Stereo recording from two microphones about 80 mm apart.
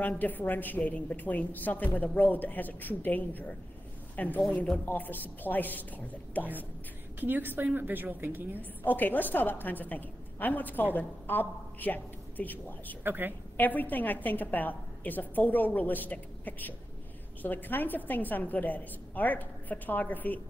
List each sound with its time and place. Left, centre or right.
0.0 s a woman's voice: left
7.2 s a woman's voice: right
8.8 s a woman's voice: left
13.0 s a woman's voice: right
13.6 s a woman's voice: left